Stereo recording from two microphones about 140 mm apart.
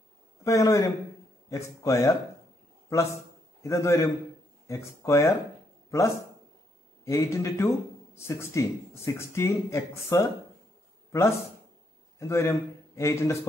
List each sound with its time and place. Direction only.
0.4 s speech: 25° left (ahead or behind)
3.6 s a man's voice: 20° left (ahead or behind)